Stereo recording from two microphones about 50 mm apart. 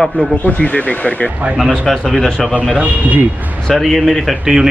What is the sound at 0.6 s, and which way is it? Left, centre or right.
Speech, left.